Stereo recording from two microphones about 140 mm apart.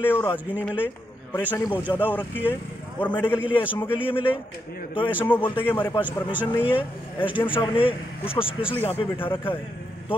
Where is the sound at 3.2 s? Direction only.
35° left (ahead or behind).